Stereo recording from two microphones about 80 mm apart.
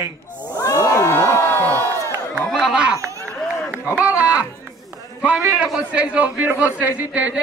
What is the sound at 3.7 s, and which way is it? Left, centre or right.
A man's voice, centre.